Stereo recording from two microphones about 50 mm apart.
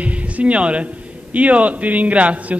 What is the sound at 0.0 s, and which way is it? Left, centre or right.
Speech, right.